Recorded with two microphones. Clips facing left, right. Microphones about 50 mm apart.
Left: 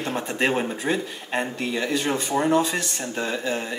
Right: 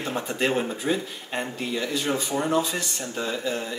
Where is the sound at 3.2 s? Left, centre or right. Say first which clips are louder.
Left 2 dB; left.